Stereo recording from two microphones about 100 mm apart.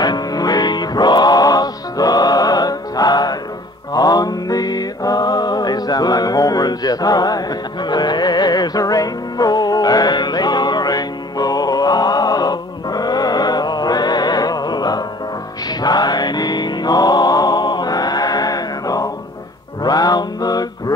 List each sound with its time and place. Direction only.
0.0 s music: 40° left (ahead or behind)
3.9 s mantra: 40° left (ahead or behind)
15.8 s music: 45° left (ahead or behind)
19.8 s mantra: 40° left (ahead or behind)